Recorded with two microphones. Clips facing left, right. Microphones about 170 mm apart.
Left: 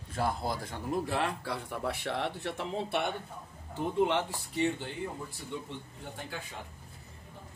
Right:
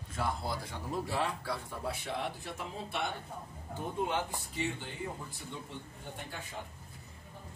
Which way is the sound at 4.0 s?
80° left.